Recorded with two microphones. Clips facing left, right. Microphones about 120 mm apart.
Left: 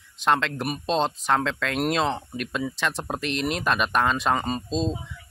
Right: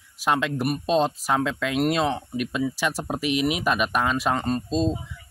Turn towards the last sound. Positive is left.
turn(degrees=-5)  # may be behind; listen again after turning